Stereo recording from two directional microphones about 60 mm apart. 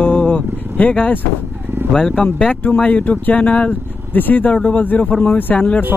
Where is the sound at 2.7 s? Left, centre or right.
Left.